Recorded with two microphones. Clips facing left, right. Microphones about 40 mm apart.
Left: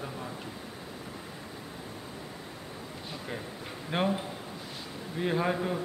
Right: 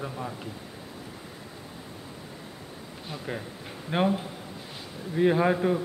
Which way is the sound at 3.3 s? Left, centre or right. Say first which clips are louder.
Right 3 dB; centre.